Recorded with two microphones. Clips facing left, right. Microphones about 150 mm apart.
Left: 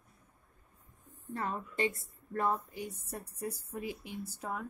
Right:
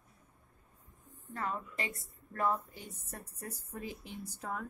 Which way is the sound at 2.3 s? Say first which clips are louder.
Left 1 dB; 20° left (ahead or behind).